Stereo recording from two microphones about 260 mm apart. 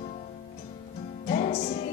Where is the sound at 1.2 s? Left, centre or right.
Left.